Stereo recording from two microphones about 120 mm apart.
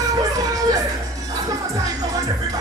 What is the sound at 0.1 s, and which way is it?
Music, 30° right (ahead or behind).